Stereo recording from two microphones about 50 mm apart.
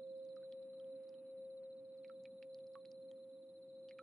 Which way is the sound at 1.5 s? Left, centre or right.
Right.